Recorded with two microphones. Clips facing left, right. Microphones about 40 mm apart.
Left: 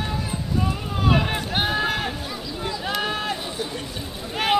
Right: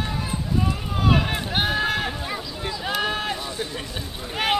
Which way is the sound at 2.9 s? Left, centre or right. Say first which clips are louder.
Right 1 dB; centre.